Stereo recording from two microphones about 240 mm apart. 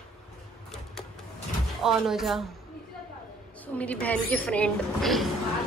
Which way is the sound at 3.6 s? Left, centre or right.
Centre.